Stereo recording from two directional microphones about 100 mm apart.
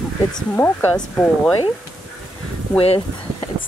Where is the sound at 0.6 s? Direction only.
15° left (ahead or behind).